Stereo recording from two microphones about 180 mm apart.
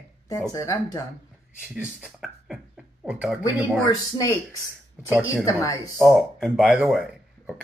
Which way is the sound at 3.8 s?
20° left (ahead or behind).